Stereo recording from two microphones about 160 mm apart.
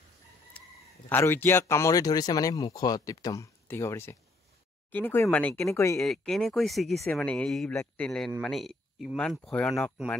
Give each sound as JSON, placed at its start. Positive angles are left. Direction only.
{"t": 0.5, "sound": "speech", "side_deg": 10}
{"t": 5.9, "sound": "speech", "side_deg": 5}